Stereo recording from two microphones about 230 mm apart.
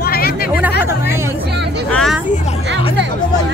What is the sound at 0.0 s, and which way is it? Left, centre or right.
Chatter, left.